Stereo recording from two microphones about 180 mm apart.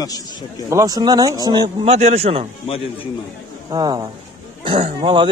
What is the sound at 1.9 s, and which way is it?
Speech, 35° right (ahead or behind).